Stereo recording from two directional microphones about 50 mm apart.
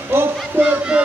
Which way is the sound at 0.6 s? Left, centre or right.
Right.